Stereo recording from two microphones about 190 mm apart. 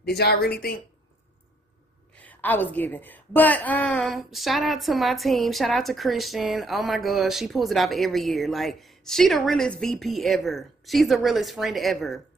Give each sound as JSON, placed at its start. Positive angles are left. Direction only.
{"t": 0.2, "sound": "speech", "side_deg": 55}
{"t": 2.1, "sound": "a woman's voice", "side_deg": 10}